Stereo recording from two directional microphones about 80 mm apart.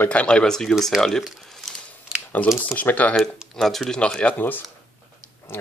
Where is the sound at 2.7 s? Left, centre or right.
Centre.